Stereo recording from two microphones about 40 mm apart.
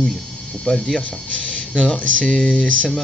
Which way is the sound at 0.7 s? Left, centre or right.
Left.